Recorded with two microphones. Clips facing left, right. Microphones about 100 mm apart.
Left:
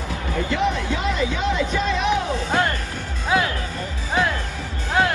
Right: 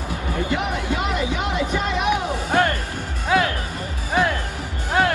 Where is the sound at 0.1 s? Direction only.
15° right (ahead or behind).